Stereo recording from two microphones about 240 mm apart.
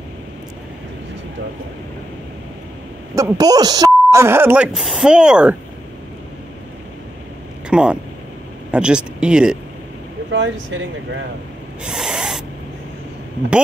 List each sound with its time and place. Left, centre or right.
3.2 s speech: centre
7.7 s speech: centre
10.3 s speech: right
11.8 s owl: centre